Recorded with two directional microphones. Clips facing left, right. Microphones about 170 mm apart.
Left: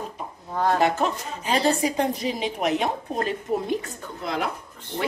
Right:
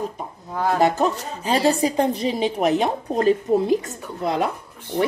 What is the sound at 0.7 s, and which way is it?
Speech, 40° right (ahead or behind).